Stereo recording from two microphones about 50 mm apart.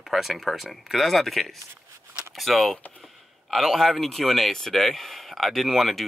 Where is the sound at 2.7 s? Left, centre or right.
Left.